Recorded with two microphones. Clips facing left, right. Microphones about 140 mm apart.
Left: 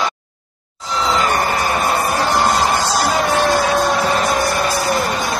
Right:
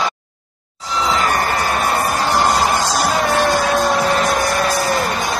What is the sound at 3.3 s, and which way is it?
Vehicle, centre (ahead or behind).